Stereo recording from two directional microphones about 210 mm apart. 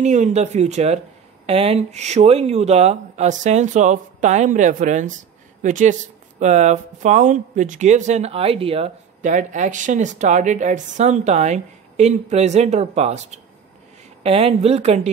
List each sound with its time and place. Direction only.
0.0 s speech: 35° right (ahead or behind)